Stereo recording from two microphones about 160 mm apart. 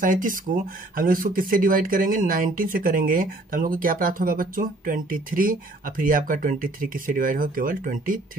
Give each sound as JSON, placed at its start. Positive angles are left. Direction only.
{"t": 0.0, "sound": "speech", "side_deg": -55}